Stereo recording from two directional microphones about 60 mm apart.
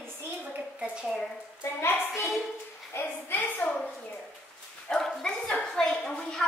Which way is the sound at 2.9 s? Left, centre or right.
Left.